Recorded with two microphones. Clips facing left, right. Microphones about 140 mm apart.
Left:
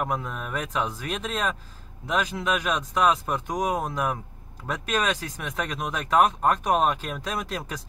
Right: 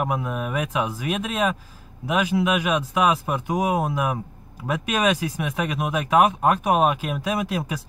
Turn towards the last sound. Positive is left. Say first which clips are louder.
# right 6 dB
turn(degrees=-5)  # may be behind; listen again after turning